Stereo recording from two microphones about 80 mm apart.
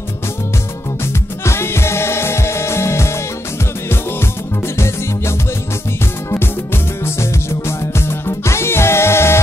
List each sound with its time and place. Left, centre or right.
1.4 s music: left
4.7 s music: left
6.3 s music: left